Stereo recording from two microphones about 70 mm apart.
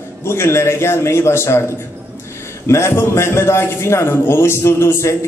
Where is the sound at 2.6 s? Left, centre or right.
Left.